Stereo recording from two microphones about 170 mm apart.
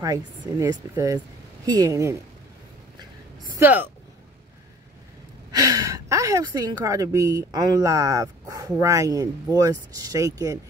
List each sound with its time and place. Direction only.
0.0 s a woman's voice: 20° right (ahead or behind)
3.5 s speech: 10° right (ahead or behind)
5.5 s a woman's voice: 20° right (ahead or behind)